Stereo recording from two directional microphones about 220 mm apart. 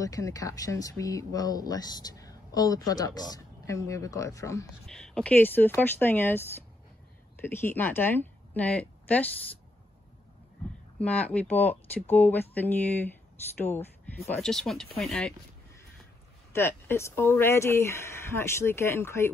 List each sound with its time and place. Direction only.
0.0 s speech: 15° left (ahead or behind)
4.8 s a woman's voice: 5° left (ahead or behind)
11.0 s speech: 5° left (ahead or behind)
16.5 s speech: 10° left (ahead or behind)